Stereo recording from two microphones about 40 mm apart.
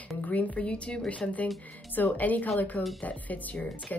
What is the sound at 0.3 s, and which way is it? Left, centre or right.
Speech, left.